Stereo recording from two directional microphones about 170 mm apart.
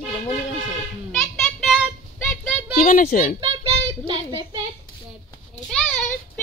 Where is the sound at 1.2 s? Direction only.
Centre (ahead or behind).